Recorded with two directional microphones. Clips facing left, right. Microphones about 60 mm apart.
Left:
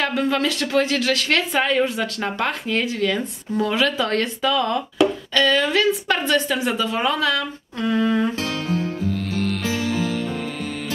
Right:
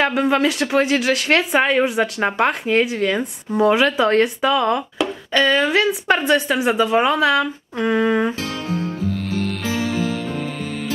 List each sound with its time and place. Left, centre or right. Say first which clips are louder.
0.0 s speech: right 4 dB; right